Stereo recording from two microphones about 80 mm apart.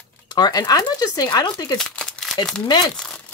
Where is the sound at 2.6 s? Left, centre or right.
Left.